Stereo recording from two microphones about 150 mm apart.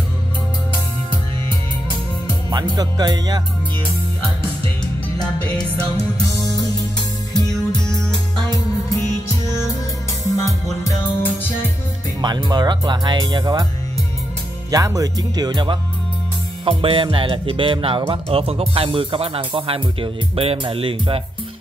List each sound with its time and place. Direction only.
1.9 s music: 30° right (ahead or behind)
10.3 s music: 20° left (ahead or behind)
12.2 s speech: 30° right (ahead or behind)
14.7 s speech: 20° right (ahead or behind); by 21.2 s 40° right (ahead or behind)